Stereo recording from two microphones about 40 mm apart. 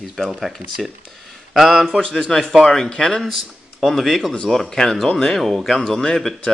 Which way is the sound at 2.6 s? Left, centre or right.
Centre.